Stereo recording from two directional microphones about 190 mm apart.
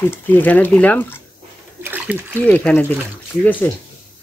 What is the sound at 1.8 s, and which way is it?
Splash, 10° right (ahead or behind).